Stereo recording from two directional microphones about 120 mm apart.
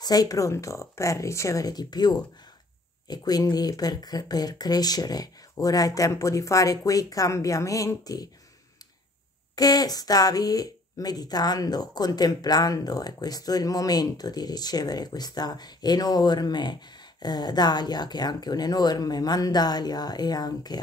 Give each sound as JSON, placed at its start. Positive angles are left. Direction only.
{"t": 0.0, "sound": "speech", "side_deg": 30}
{"t": 9.6, "sound": "speech", "side_deg": 35}